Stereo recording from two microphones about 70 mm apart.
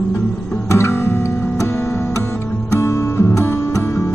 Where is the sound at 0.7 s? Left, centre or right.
Left.